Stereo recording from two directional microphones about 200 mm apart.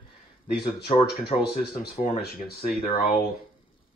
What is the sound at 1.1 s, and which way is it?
Speech, 50° left (ahead or behind).